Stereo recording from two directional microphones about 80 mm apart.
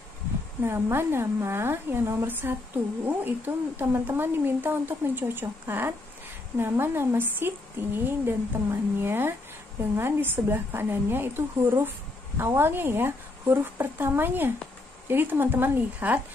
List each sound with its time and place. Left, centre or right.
0.7 s a woman's voice: right